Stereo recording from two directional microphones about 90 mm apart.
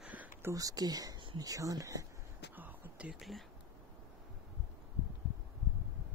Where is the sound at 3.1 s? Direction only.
Centre (ahead or behind).